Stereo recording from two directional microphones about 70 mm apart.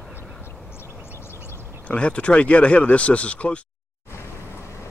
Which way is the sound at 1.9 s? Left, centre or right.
Centre.